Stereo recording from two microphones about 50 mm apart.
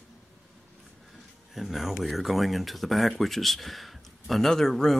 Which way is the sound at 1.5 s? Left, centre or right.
Centre.